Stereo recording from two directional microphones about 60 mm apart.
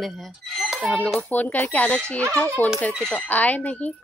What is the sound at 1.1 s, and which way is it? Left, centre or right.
Speech, left.